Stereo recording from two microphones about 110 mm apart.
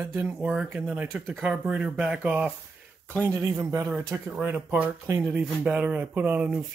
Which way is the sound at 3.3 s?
30° right (ahead or behind).